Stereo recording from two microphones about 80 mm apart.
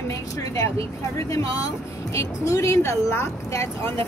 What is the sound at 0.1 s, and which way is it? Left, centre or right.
Speech, left.